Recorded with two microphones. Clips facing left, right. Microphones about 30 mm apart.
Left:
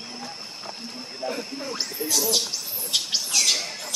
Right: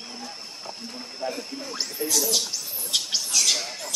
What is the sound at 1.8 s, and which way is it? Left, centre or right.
Speech, centre.